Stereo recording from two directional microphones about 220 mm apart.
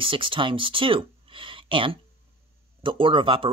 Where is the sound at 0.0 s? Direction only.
25° right (ahead or behind).